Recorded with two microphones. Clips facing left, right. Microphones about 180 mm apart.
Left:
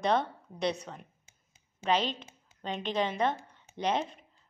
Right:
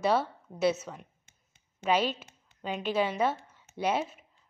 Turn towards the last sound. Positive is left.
turn(degrees=-5)  # may be behind; listen again after turning